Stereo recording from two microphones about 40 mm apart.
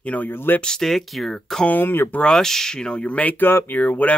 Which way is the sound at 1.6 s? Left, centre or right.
Left.